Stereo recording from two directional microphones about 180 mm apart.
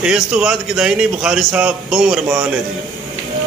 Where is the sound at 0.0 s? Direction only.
5° right (ahead or behind).